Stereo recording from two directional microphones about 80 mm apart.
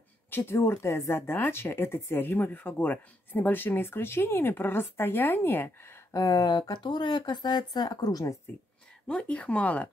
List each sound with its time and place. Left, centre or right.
0.3 s speech: left
6.1 s speech: left
9.0 s speech: centre